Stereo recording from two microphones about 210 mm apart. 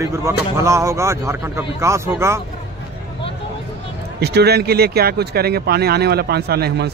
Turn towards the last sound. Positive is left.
turn(degrees=-50)  # may be behind; listen again after turning